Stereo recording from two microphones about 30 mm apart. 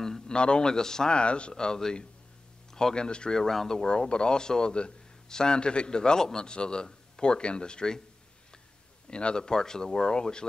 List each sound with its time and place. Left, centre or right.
0.3 s a man's voice: left
1.1 s speech: left
1.5 s a man's voice: left
3.3 s speech: centre
4.1 s a man's voice: left
9.1 s a man's voice: left